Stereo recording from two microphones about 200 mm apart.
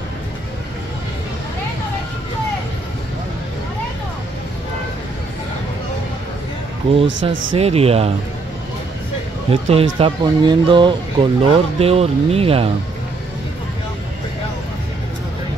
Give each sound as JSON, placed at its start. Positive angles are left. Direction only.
{"t": 7.2, "sound": "speech", "side_deg": -25}
{"t": 9.5, "sound": "speech", "side_deg": -30}